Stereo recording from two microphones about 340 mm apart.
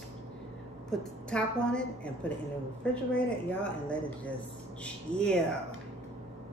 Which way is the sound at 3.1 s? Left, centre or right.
Centre.